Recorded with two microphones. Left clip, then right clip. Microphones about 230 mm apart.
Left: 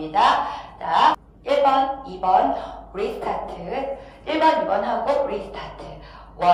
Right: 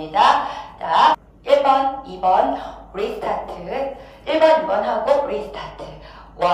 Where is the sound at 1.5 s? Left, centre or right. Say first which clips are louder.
Right 5 dB; right.